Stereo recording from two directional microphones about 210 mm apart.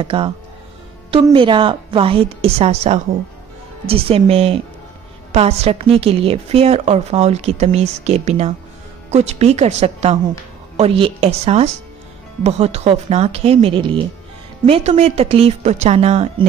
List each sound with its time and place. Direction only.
0.0 s a woman's voice: 25° right (ahead or behind)